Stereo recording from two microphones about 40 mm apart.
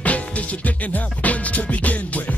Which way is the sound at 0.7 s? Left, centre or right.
Left.